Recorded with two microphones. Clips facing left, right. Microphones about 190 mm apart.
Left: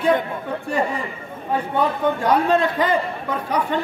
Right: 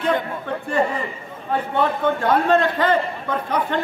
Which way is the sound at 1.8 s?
10° left (ahead or behind).